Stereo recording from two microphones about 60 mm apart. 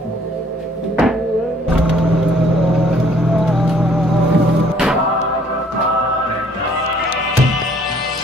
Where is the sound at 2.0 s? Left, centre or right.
Centre.